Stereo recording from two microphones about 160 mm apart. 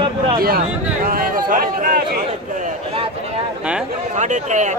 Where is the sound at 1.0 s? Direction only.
65° right (ahead or behind).